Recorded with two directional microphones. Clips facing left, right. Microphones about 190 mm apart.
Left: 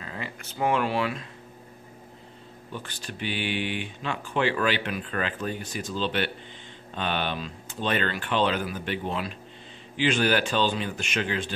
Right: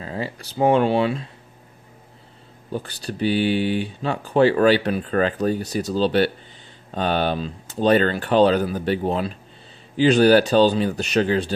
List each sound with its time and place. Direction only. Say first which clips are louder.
0.0 s speech: right 8 dB; 35° right (ahead or behind)
2.7 s speech: right 9 dB; 35° right (ahead or behind)